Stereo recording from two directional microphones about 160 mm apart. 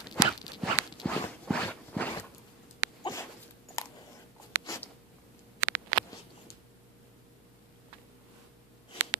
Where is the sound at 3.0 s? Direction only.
20° left (ahead or behind).